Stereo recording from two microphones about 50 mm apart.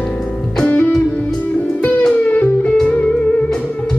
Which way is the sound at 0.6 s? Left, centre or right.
Left.